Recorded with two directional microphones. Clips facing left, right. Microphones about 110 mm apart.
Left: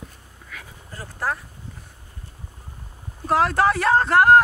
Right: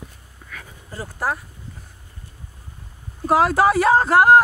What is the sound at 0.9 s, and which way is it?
Speech, 10° right (ahead or behind).